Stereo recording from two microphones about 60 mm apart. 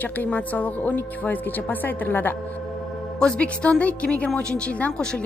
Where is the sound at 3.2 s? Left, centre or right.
Centre.